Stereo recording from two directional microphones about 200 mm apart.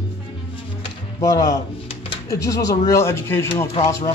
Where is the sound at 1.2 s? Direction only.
15° left (ahead or behind).